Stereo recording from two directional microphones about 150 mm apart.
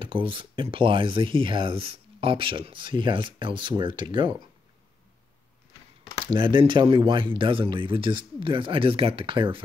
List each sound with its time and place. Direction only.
0.0 s speech: 35° right (ahead or behind)
6.3 s speech: 30° right (ahead or behind)